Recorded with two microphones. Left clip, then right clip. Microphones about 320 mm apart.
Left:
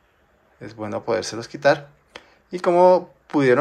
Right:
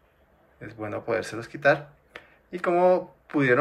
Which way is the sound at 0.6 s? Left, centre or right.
Centre.